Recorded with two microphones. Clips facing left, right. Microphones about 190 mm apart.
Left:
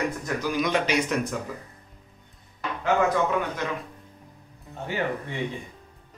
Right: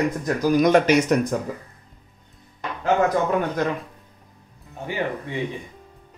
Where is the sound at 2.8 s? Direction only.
45° right (ahead or behind).